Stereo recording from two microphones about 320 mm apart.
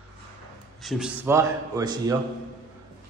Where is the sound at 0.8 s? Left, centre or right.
Centre.